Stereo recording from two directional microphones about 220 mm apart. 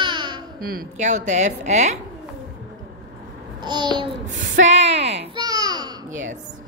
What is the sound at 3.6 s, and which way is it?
Babbling, 20° right (ahead or behind).